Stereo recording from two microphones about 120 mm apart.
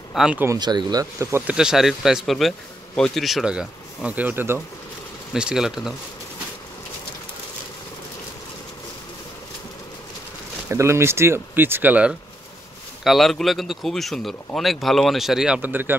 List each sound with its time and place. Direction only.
0.1 s speech: 5° right (ahead or behind)
0.6 s speech: 35° right (ahead or behind)
1.5 s speech: 5° right (ahead or behind)
5.3 s speech: 5° right (ahead or behind)
10.7 s speech: 20° right (ahead or behind)
13.0 s speech: centre (ahead or behind); by 15.9 s 15° right (ahead or behind)